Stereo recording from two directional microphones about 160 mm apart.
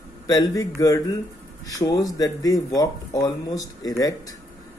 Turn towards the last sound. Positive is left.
turn(degrees=20)  # may be behind; listen again after turning